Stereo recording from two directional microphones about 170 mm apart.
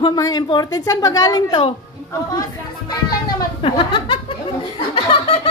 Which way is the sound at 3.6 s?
30° left (ahead or behind).